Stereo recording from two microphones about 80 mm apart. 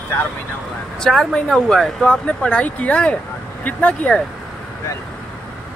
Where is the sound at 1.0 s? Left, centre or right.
Centre.